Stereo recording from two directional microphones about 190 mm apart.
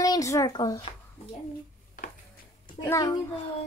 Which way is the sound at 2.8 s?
20° left (ahead or behind).